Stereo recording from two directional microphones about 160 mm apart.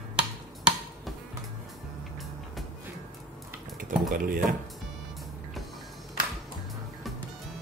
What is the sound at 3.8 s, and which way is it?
Dishes, 55° right (ahead or behind).